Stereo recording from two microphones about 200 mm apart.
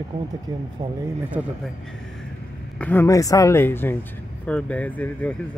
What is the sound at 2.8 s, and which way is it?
Speech, 10° left (ahead or behind).